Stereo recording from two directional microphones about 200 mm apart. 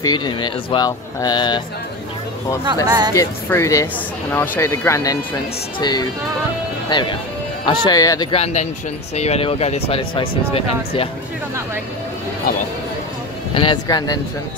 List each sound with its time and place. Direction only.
0.0 s speech: 20° left (ahead or behind)
2.6 s speech: 20° right (ahead or behind)
3.2 s speech: 15° left (ahead or behind)
13.6 s speech: 25° left (ahead or behind)